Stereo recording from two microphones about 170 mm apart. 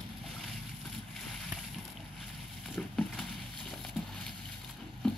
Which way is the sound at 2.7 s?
Centre (ahead or behind).